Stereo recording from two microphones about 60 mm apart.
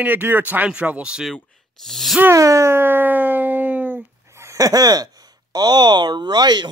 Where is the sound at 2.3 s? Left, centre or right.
Right.